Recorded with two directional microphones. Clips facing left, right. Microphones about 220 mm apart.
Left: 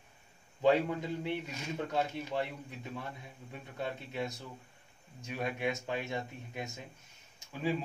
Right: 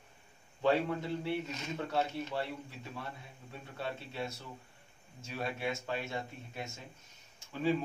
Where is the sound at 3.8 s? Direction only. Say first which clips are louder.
Left 2 dB; 15° left (ahead or behind).